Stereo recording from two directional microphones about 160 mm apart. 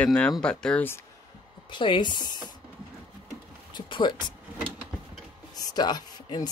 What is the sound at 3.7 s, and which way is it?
Speech, 30° left (ahead or behind).